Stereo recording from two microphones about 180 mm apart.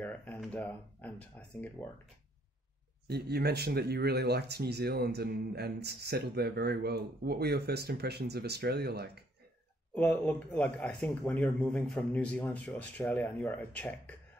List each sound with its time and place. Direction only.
0.0 s a sound: 10° left (ahead or behind)
0.5 s speech: 10° left (ahead or behind)
3.1 s speech: 60° right (ahead or behind)
9.9 s speech: 10° left (ahead or behind)